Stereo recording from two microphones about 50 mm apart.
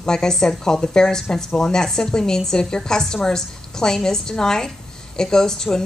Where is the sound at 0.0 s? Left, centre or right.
Centre.